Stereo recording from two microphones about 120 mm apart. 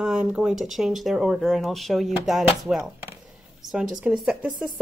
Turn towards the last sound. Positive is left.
turn(degrees=-5)  # may be behind; listen again after turning